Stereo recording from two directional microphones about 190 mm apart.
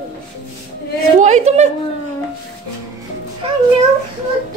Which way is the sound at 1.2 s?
35° right (ahead or behind).